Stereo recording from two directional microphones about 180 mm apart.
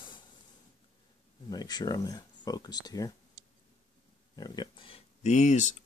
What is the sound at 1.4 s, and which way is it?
Speech, 20° left (ahead or behind).